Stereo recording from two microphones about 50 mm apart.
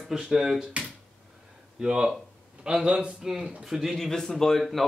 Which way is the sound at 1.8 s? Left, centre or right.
Centre.